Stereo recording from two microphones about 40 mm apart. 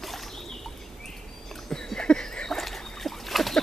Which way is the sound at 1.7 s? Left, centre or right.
Centre.